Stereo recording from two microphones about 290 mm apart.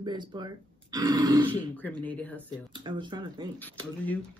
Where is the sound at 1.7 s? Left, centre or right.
Centre.